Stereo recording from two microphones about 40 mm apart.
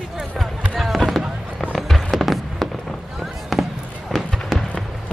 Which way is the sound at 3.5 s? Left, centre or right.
Centre.